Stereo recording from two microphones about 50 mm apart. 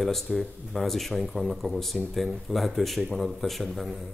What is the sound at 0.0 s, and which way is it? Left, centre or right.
Speech, centre.